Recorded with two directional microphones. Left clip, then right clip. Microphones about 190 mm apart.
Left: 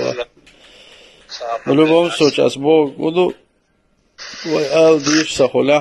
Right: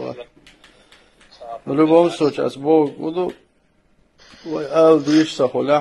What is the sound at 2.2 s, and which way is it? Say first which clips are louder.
A man's voice: left 6 dB; 30° left (ahead or behind).